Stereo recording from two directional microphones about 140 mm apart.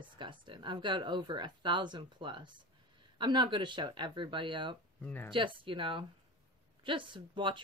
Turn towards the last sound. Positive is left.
turn(degrees=-35)  # may be behind; listen again after turning